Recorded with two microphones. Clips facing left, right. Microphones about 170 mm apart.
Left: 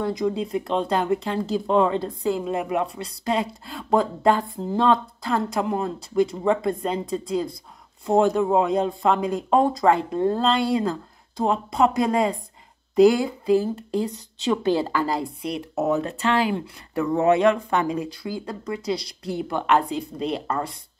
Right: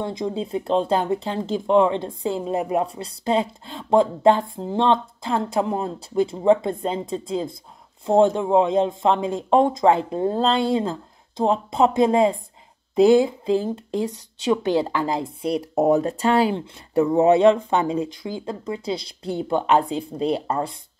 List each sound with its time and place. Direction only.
0.0 s a woman's voice: 25° right (ahead or behind)
15.4 s speech: 35° right (ahead or behind)